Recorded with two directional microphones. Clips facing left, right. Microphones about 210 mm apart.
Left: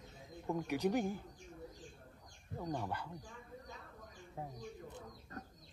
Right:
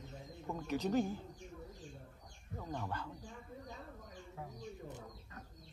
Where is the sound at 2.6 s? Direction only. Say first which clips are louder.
Left 2 dB; 15° left (ahead or behind).